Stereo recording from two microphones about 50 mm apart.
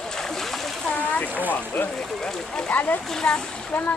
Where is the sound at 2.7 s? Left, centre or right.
Left.